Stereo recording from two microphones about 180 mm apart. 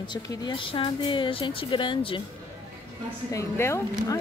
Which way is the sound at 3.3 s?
15° left (ahead or behind).